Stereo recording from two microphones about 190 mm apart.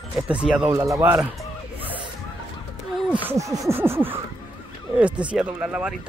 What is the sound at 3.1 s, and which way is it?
Speech, 10° right (ahead or behind).